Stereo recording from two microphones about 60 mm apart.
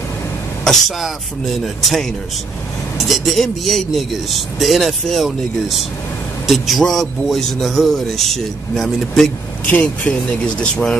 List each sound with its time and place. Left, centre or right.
1.8 s a man's voice: centre
3.1 s a man's voice: centre
9.7 s speech: left
10.6 s speech: centre